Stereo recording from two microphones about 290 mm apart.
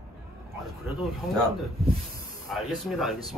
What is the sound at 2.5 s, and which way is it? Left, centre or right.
Speech, centre.